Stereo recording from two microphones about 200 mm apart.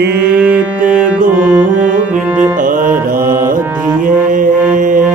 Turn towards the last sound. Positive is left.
turn(degrees=-40)  # may be behind; listen again after turning